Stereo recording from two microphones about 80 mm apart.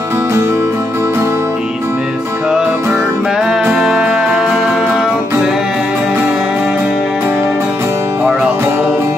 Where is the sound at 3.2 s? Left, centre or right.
Centre.